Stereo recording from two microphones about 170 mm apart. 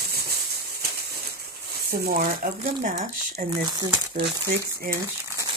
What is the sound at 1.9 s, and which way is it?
Speech, 60° right (ahead or behind).